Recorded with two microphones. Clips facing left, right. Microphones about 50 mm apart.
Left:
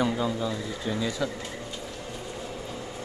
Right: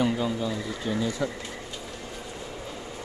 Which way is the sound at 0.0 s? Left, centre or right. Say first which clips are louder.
Right 1 dB; centre.